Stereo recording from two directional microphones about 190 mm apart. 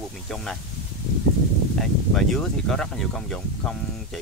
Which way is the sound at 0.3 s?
5° left (ahead or behind).